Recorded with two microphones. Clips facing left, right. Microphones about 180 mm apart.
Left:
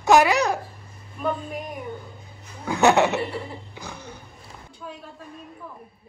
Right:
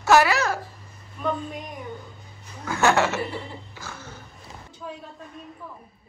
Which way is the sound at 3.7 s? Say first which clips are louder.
Left 2 dB; 15° left (ahead or behind).